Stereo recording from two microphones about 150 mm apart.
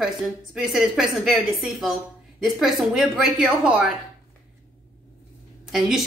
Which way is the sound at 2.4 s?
Centre (ahead or behind).